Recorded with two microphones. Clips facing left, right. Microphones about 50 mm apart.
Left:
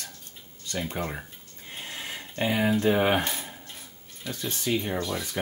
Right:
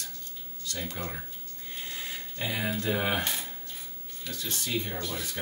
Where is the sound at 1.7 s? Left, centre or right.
Left.